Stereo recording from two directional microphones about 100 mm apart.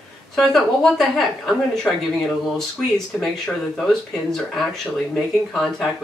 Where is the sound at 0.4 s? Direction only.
5° left (ahead or behind).